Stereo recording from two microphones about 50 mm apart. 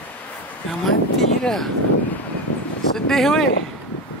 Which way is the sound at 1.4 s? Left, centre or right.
Centre.